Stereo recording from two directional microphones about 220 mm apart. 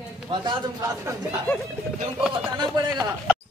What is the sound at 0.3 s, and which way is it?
Speech, 20° right (ahead or behind).